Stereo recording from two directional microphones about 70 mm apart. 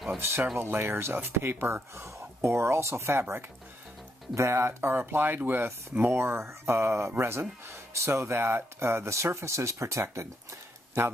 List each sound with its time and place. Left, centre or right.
0.2 s speech: right